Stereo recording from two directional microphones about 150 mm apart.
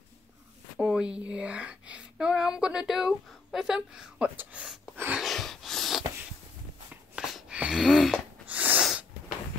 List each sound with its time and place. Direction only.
0.7 s speech: 5° right (ahead or behind)
5.2 s a sound: centre (ahead or behind)
8.5 s sneeze: 10° right (ahead or behind)